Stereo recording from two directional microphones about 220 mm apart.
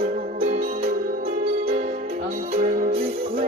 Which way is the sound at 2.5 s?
35° right (ahead or behind).